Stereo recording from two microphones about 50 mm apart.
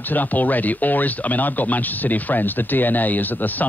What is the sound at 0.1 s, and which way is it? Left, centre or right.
Speech, left.